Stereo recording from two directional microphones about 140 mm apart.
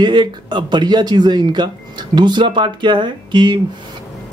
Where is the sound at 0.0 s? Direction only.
35° right (ahead or behind).